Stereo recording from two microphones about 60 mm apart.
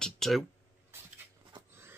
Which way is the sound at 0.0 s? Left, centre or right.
Centre.